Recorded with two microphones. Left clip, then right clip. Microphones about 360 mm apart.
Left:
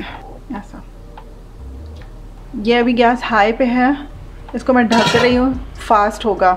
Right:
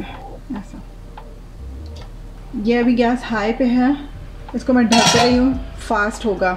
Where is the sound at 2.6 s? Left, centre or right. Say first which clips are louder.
Left 4 dB; left.